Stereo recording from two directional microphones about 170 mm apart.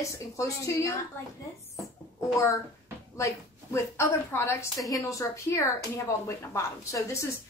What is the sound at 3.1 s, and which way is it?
Speech, 15° left (ahead or behind).